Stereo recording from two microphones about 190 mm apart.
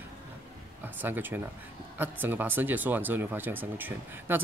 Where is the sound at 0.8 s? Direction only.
10° right (ahead or behind).